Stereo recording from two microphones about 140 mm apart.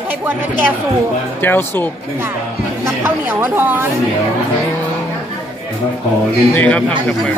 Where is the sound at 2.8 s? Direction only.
15° right (ahead or behind).